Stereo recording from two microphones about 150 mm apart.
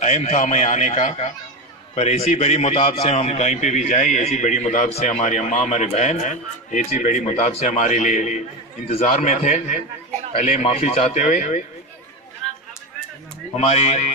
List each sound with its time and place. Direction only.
0.0 s a man's voice: 50° left (ahead or behind)
13.6 s a man's voice: 45° left (ahead or behind)